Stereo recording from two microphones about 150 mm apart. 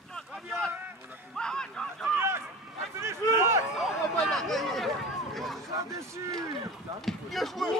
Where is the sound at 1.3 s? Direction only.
5° left (ahead or behind).